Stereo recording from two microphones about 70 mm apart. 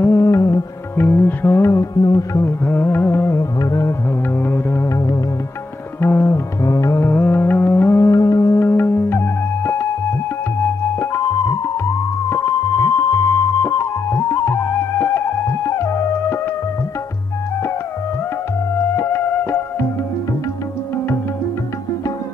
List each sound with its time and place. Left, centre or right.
0.0 s music: left
0.9 s music: left
2.0 s music: left
2.3 s music: left
3.3 s music: left
4.4 s music: left
4.8 s music: left
5.9 s music: left
6.6 s music: left
8.1 s music: left
8.5 s music: left
12.3 s music: left
18.9 s music: left